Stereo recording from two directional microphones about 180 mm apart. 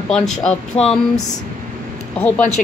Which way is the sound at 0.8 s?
35° left (ahead or behind).